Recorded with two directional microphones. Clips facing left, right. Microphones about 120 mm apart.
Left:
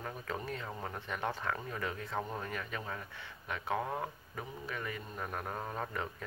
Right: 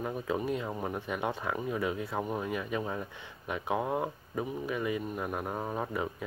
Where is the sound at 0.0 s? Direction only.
15° right (ahead or behind).